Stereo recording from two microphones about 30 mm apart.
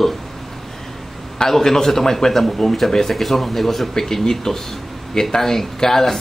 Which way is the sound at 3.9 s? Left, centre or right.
Centre.